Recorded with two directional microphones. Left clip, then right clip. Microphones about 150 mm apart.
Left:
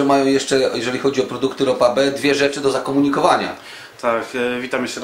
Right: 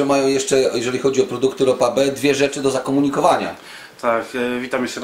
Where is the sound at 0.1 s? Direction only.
25° left (ahead or behind).